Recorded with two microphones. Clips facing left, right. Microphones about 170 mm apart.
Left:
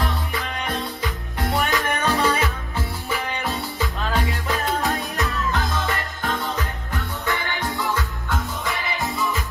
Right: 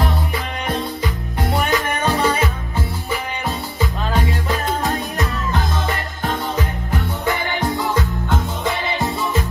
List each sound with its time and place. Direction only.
1.6 s music: centre (ahead or behind)
1.9 s music: 20° right (ahead or behind)
2.1 s music: centre (ahead or behind)
6.2 s music: 20° right (ahead or behind)